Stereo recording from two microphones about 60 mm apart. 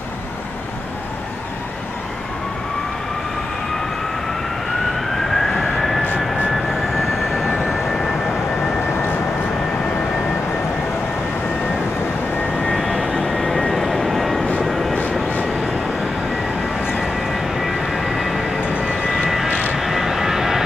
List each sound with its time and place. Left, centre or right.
5.3 s vehicle: centre
12.7 s vehicle: centre
17.0 s vehicle: centre
18.7 s vehicle: centre